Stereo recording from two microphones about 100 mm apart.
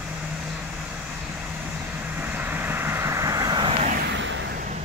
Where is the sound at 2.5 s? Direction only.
20° right (ahead or behind); by 3.6 s 40° right (ahead or behind).